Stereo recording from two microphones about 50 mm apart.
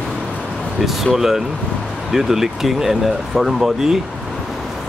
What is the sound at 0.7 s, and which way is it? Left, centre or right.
Speech, centre.